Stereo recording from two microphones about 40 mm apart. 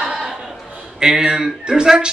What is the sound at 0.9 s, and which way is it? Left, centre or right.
A man's voice, centre.